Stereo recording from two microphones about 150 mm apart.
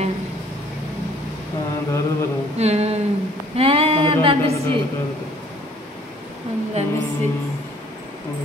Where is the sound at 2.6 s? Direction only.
45° right (ahead or behind).